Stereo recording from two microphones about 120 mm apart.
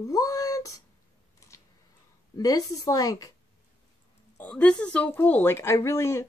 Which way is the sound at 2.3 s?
30° left (ahead or behind).